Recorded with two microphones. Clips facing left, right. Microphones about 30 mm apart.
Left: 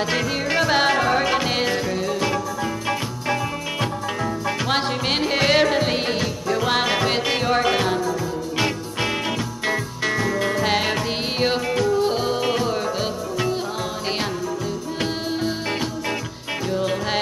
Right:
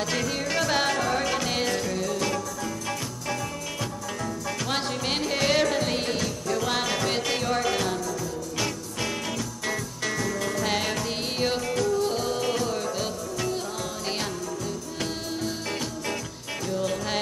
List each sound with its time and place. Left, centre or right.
0.0 s music: left
4.5 s music: left
16.7 s music: left